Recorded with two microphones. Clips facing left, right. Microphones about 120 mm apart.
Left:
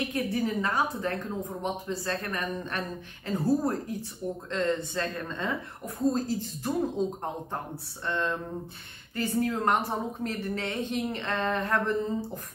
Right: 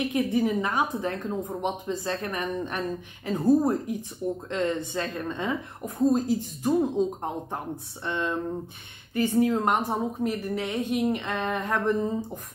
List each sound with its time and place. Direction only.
0.0 s a woman's voice: 15° right (ahead or behind)
7.7 s a woman's voice: 15° right (ahead or behind)